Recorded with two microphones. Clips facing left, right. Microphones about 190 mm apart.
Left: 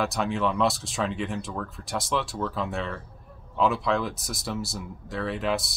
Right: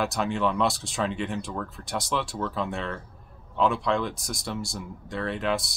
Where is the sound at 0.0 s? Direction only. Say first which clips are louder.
Even; centre (ahead or behind).